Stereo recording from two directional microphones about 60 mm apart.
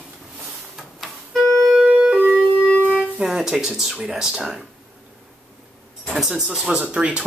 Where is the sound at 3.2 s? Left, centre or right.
Centre.